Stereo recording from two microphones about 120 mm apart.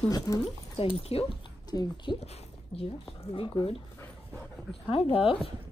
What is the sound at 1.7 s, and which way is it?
Speech, 35° left (ahead or behind).